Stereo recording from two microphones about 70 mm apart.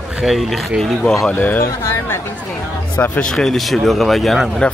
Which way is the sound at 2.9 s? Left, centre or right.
Left.